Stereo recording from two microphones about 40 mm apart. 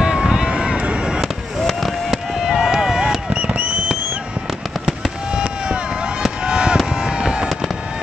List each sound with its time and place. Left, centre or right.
0.0 s run: centre
1.2 s fireworks: centre
2.7 s run: centre
3.3 s a sound: right
5.3 s fireworks: right
6.4 s a sound: right
6.9 s vehicle: centre